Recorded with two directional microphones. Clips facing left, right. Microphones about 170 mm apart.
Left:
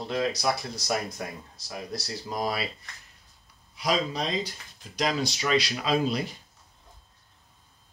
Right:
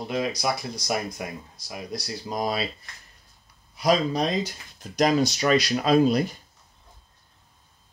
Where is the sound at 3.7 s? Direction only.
45° right (ahead or behind).